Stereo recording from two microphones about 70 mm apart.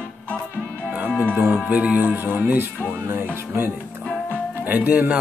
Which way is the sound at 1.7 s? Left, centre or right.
Centre.